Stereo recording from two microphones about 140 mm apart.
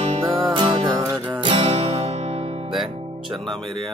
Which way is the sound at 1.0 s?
20° right (ahead or behind).